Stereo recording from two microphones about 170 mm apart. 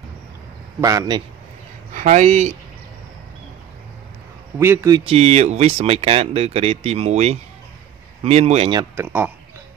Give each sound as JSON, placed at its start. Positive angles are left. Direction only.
{"t": 0.7, "sound": "a man's voice", "side_deg": -20}
{"t": 2.0, "sound": "speech", "side_deg": -45}
{"t": 4.6, "sound": "speech", "side_deg": -15}
{"t": 5.0, "sound": "speech", "side_deg": -35}
{"t": 8.9, "sound": "speech", "side_deg": -10}